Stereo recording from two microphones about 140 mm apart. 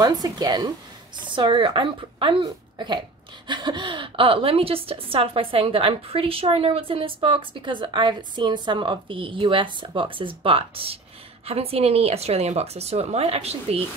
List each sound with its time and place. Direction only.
0.0 s a woman's voice: 25° right (ahead or behind); by 13.8 s 45° right (ahead or behind)